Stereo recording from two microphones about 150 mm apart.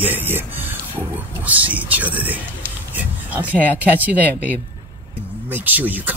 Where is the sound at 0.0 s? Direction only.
15° right (ahead or behind).